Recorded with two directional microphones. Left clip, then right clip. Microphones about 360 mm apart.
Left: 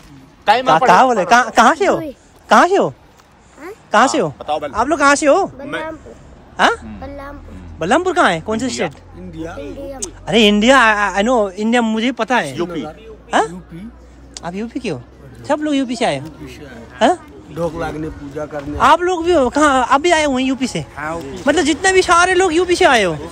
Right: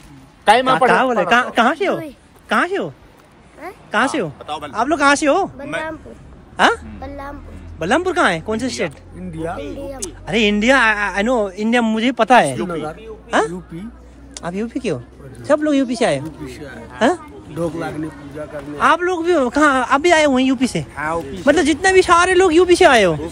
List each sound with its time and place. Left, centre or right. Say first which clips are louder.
0.7 s a man's voice: left 3 dB; centre
6.5 s a woman's voice: even; centre
9.4 s speech: right 3 dB; centre
9.8 s a man's voice: left 1 dB; centre
13.3 s a man's voice: left 2 dB; centre